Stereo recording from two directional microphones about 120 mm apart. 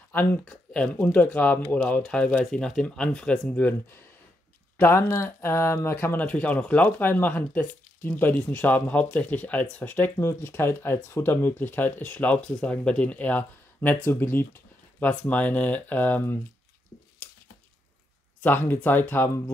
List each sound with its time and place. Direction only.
0.1 s speech: 15° left (ahead or behind)
18.7 s speech: 15° left (ahead or behind)